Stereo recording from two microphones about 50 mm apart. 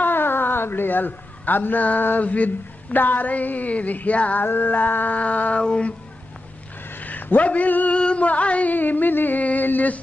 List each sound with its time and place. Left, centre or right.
0.0 s a woman's voice: left
4.4 s music: left
5.6 s a sound: left
7.0 s speech: left
8.0 s music: left